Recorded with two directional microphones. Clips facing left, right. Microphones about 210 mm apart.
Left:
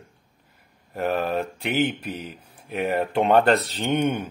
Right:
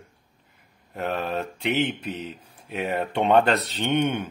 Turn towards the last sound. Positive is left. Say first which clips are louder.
# left 1 dB
turn(degrees=5)  # may be behind; listen again after turning